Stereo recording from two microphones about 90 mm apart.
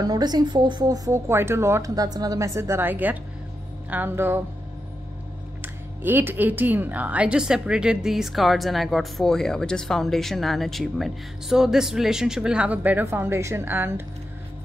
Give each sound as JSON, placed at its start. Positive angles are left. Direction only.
{"t": 0.0, "sound": "a woman's voice", "side_deg": -50}
{"t": 0.8, "sound": "a woman's voice", "side_deg": -40}
{"t": 2.0, "sound": "a woman's voice", "side_deg": -45}
{"t": 5.6, "sound": "speech", "side_deg": -25}
{"t": 13.0, "sound": "a woman's voice", "side_deg": -25}